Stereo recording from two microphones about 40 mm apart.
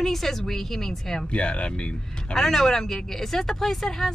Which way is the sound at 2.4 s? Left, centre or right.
Centre.